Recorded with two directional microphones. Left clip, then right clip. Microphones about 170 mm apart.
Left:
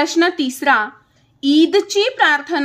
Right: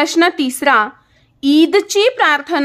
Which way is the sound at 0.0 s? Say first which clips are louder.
Right 3 dB; 35° right (ahead or behind).